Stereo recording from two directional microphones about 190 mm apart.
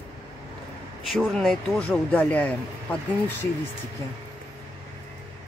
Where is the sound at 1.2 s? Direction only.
Centre (ahead or behind).